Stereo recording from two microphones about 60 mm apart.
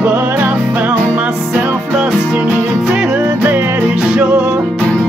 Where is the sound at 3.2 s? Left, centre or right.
Right.